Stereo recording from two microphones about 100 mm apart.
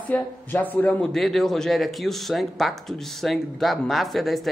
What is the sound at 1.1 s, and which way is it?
Speech, 5° left (ahead or behind).